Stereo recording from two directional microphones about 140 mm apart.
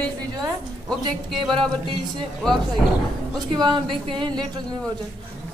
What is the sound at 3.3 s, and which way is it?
Speech, 30° right (ahead or behind).